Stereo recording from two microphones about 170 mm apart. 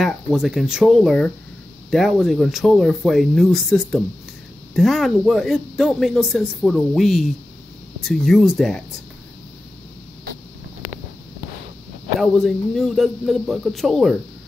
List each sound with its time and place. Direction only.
0.0 s speech: centre (ahead or behind)
12.2 s speech: centre (ahead or behind)